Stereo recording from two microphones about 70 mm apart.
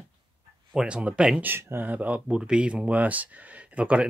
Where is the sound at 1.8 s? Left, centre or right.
Right.